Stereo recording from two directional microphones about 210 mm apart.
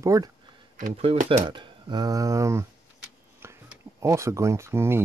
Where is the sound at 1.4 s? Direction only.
20° right (ahead or behind).